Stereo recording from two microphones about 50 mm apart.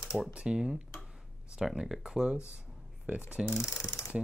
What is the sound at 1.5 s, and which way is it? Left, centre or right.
Speech, centre.